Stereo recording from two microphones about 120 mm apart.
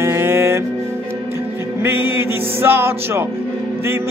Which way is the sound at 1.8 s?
15° right (ahead or behind).